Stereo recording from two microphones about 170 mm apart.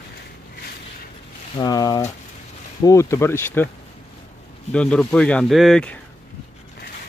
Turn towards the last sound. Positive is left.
turn(degrees=5)  # may be behind; listen again after turning